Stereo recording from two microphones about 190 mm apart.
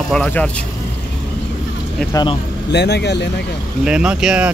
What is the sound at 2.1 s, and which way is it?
Speech, 25° left (ahead or behind).